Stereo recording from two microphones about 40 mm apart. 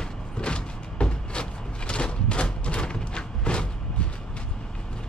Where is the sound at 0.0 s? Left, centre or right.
Left.